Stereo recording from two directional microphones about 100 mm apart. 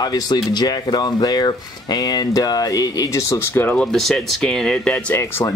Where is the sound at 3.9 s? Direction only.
5° left (ahead or behind).